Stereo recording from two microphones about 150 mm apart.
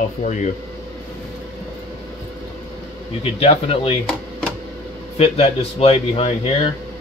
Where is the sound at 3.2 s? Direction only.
40° left (ahead or behind).